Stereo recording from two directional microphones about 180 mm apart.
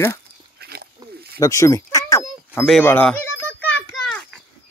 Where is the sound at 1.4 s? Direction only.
15° left (ahead or behind).